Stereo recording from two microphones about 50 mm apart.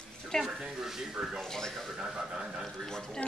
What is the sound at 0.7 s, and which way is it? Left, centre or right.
Speech, centre.